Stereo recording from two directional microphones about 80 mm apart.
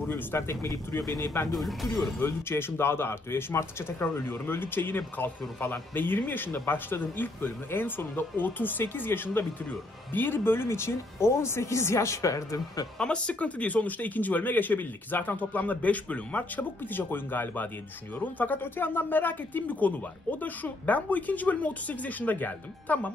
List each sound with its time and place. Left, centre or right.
0.1 s speech: left
1.0 s speech: right
1.5 s speech: centre
2.1 s speech: left
13.0 s speech: centre